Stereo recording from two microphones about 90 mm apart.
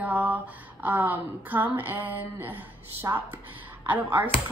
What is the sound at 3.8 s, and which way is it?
Speech, 20° right (ahead or behind).